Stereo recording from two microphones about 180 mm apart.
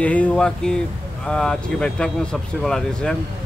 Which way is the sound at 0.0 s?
5° left (ahead or behind).